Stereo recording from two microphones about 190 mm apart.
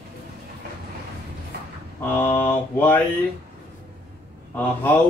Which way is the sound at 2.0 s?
10° left (ahead or behind).